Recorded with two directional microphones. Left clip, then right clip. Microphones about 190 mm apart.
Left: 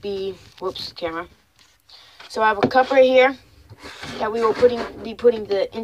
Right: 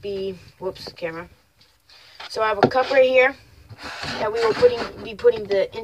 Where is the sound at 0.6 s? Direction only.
20° left (ahead or behind).